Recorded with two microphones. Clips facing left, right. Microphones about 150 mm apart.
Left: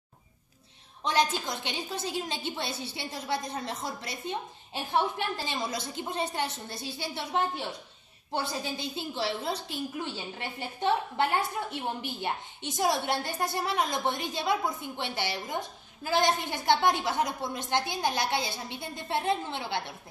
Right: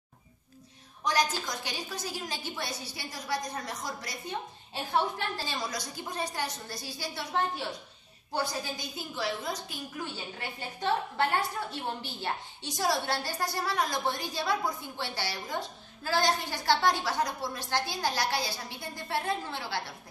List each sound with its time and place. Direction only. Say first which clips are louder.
1.0 s a woman's voice: left 2 dB; 25° left (ahead or behind)
11.7 s a woman's voice: left 2 dB; 20° left (ahead or behind)